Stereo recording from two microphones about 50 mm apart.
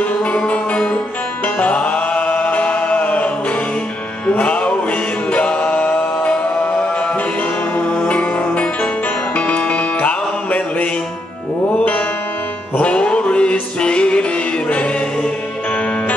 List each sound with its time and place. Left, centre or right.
0.2 s music: left
4.3 s music: left
5.3 s a capella: left
7.7 s music: left
12.7 s music: left